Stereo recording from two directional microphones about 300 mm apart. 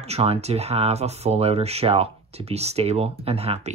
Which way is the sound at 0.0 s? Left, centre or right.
Centre.